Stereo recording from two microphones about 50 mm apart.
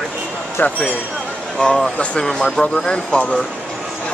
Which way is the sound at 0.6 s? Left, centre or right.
Left.